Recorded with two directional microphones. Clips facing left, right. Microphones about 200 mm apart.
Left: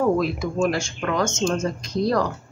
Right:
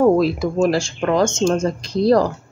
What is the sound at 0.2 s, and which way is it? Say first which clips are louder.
A woman's voice: right 5 dB; 35° right (ahead or behind).